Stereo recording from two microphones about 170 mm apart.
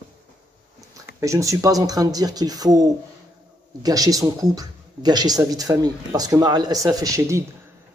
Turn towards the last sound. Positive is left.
turn(degrees=-20)  # may be behind; listen again after turning